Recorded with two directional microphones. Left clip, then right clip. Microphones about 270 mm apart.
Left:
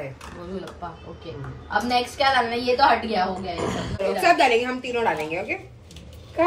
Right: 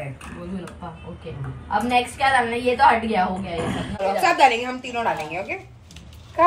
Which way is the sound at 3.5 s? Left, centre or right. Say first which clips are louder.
Right 1 dB; left.